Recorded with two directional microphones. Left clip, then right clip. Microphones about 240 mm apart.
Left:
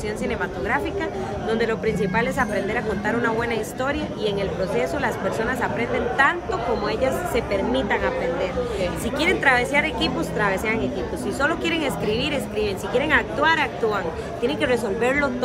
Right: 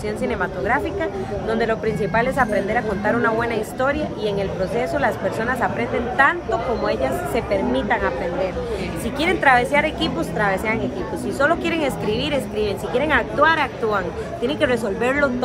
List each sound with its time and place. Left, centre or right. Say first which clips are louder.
1.5 s a woman's voice: right 2 dB; centre
9.2 s a woman's voice: right 3 dB; centre